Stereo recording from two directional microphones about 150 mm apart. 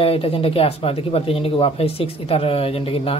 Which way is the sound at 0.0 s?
40° left (ahead or behind).